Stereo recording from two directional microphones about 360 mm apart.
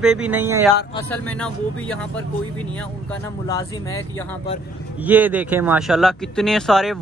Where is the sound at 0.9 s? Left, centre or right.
Centre.